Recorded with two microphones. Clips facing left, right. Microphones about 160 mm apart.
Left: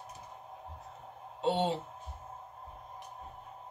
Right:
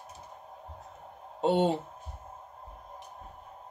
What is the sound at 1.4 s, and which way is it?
Speech, 50° right (ahead or behind).